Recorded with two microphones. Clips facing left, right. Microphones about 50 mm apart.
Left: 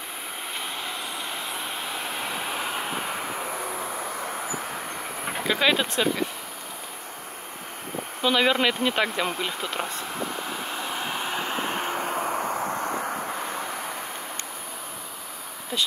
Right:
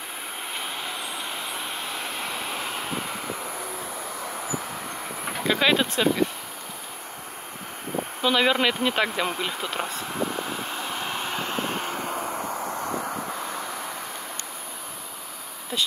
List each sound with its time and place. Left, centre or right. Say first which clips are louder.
0.6 s vehicle: even; centre; by 3.5 s left
5.4 s speech: right 1 dB; centre
8.2 s vehicle: even; centre
11.9 s vehicle: left 2 dB; left
13.0 s vehicle: left 1 dB; centre